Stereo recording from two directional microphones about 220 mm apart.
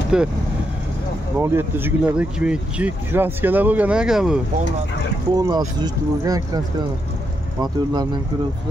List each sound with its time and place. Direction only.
0.1 s speech: 5° right (ahead or behind)
1.4 s speech: 10° right (ahead or behind)
5.3 s speech: 15° right (ahead or behind)
7.6 s speech: 20° right (ahead or behind)